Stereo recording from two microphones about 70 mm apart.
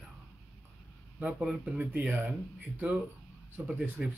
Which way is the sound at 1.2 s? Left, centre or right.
Centre.